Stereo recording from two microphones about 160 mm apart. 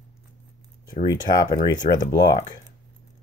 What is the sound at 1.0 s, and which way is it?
Speech, 25° left (ahead or behind).